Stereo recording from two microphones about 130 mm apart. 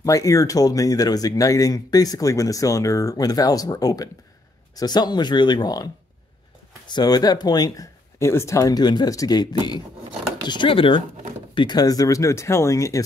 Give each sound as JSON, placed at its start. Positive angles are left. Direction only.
{"t": 0.0, "sound": "speech", "side_deg": 25}
{"t": 6.9, "sound": "speech", "side_deg": 30}